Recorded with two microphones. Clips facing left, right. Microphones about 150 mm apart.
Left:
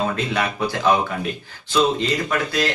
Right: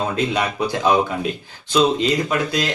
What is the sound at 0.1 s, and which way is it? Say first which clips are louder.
A man's voice: right 2 dB; 20° right (ahead or behind).